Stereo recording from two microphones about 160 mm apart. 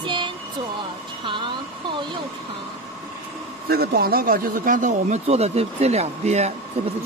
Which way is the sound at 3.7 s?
75° right (ahead or behind).